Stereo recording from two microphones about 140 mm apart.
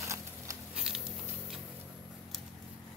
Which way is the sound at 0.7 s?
5° right (ahead or behind).